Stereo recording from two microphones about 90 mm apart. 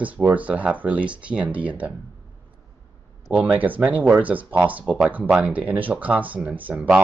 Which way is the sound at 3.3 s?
15° right (ahead or behind).